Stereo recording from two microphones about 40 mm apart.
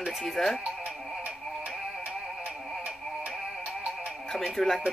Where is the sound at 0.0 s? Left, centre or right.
Centre.